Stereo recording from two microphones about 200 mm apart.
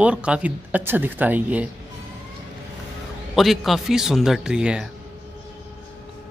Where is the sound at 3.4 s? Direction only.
Centre (ahead or behind).